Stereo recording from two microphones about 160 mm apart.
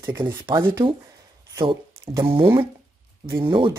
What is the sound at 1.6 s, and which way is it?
Speech, 35° right (ahead or behind).